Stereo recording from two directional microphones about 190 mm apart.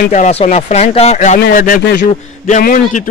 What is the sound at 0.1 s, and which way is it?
A man's voice, 35° left (ahead or behind).